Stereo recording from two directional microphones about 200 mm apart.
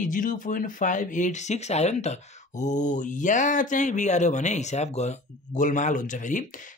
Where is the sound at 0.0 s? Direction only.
40° left (ahead or behind).